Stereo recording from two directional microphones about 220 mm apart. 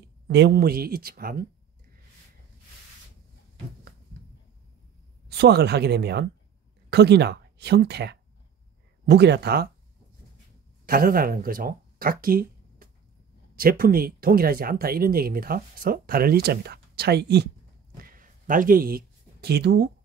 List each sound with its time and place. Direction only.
0.3 s speech: 50° right (ahead or behind)
5.3 s speech: 50° right (ahead or behind)
10.9 s speech: 40° right (ahead or behind)
18.0 s a sound: 40° right (ahead or behind)